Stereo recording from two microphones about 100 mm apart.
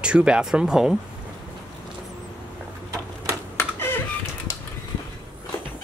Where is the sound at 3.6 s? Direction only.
25° left (ahead or behind).